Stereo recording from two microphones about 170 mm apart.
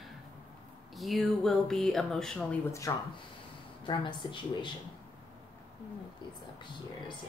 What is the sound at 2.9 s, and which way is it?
Speech, 20° left (ahead or behind).